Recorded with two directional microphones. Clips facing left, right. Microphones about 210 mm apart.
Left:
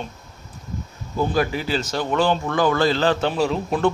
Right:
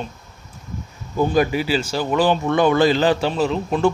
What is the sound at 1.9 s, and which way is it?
A man's voice, 5° right (ahead or behind).